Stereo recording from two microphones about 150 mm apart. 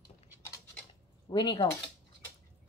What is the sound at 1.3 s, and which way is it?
Speech, 30° left (ahead or behind).